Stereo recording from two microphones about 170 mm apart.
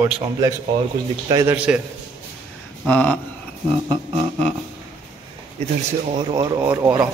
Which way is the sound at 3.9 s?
30° right (ahead or behind).